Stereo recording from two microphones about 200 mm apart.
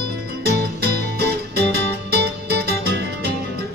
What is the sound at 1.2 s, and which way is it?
Music, 55° right (ahead or behind).